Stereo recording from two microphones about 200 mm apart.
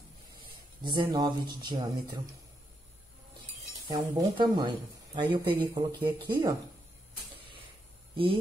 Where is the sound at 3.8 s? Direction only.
20° right (ahead or behind).